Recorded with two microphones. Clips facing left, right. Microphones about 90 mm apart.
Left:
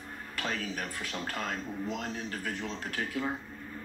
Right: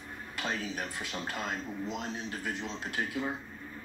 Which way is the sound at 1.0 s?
50° left (ahead or behind).